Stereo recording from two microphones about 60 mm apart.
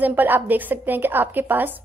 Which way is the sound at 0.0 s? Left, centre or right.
Right.